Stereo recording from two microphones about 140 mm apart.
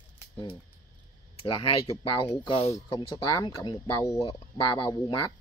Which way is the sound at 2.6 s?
20° left (ahead or behind).